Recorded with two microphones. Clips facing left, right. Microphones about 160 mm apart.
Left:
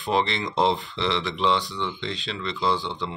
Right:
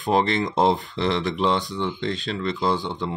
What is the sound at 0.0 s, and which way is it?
Speech, 45° right (ahead or behind).